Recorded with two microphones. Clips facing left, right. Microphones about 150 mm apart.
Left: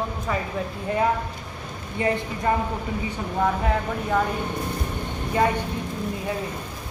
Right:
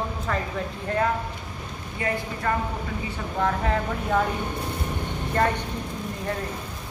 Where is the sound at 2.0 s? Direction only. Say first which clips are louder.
Left 4 dB; 25° left (ahead or behind).